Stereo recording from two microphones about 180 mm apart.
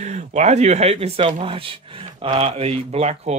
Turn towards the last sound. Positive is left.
turn(degrees=-35)  # may be behind; listen again after turning